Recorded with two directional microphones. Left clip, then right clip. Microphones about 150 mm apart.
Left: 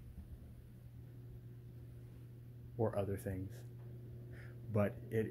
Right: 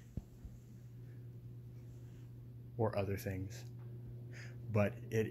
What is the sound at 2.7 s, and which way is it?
Speech, 15° left (ahead or behind).